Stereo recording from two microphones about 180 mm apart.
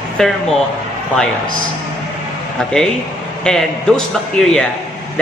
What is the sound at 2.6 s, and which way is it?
A woman's voice, 5° left (ahead or behind).